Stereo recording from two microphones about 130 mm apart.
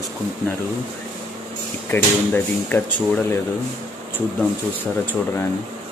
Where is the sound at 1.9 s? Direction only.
15° left (ahead or behind).